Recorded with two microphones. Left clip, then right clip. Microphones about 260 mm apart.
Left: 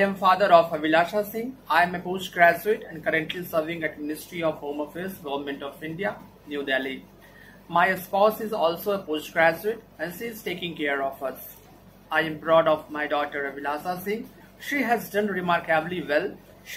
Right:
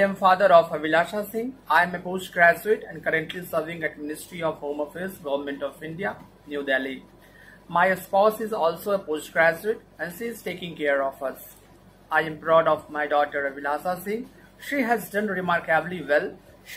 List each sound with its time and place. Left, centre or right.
0.0 s speech: right